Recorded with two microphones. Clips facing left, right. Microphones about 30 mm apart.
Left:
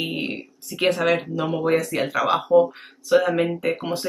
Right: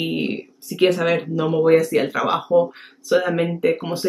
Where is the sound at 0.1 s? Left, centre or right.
Centre.